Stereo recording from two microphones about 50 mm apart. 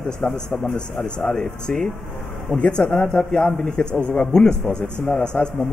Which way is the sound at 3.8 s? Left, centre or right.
Left.